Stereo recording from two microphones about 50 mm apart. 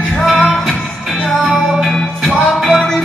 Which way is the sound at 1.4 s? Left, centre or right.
Centre.